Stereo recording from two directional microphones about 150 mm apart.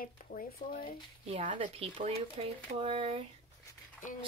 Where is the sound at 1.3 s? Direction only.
45° right (ahead or behind).